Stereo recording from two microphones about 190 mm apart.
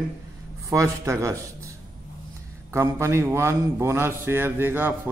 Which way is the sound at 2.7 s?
15° right (ahead or behind).